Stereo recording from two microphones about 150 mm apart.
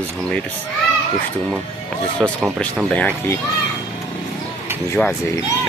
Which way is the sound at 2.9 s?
10° left (ahead or behind).